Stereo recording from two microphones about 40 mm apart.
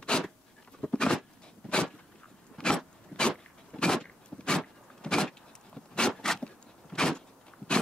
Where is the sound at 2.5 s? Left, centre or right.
Left.